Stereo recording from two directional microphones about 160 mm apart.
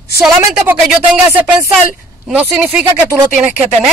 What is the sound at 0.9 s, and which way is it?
Speech, 5° right (ahead or behind).